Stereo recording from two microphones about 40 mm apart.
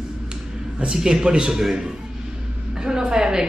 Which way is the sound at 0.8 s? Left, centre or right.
Centre.